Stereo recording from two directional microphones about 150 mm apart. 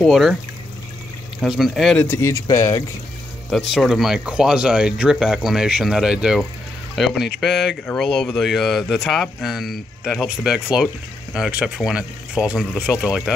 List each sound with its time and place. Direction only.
0.0 s speech: centre (ahead or behind)
1.6 s speech: centre (ahead or behind)
2.0 s speech: 15° left (ahead or behind)
3.4 s speech: centre (ahead or behind)
7.8 s speech: 10° left (ahead or behind)